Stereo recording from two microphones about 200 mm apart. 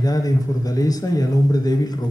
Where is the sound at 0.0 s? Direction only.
20° left (ahead or behind).